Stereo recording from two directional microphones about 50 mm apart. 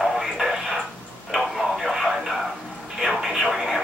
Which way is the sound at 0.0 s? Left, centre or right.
Centre.